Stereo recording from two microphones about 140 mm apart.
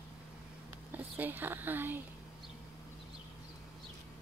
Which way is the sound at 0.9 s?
15° right (ahead or behind).